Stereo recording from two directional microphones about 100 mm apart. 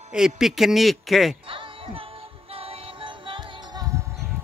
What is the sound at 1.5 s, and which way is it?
Music, 65° right (ahead or behind).